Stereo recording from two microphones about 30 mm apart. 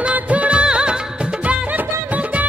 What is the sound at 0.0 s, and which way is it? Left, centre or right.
Music of bollywood, right.